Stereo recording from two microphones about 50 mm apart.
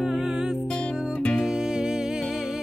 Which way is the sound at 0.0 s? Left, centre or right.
Centre.